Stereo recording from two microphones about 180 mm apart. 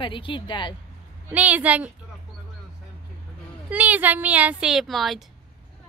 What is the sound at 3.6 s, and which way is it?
A woman's voice, 10° right (ahead or behind).